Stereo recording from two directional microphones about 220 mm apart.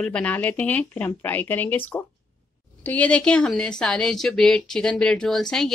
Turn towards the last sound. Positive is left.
turn(degrees=0)  # may be behind; listen again after turning